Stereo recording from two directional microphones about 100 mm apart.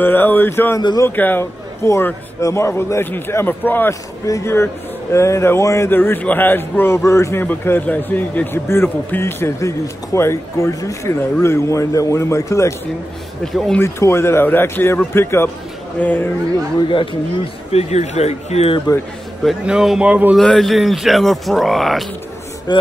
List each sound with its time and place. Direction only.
0.0 s a man's voice: 20° left (ahead or behind)
0.7 s a man's voice: 35° left (ahead or behind)
1.0 s a man's voice: 20° left (ahead or behind)
13.4 s a man's voice: 5° left (ahead or behind)
13.7 s a man's voice: 25° left (ahead or behind)
17.7 s speech: 90° left
19.6 s speech: 5° right (ahead or behind)
20.3 s a man's voice: 5° left (ahead or behind)
22.7 s speech: 45° left (ahead or behind)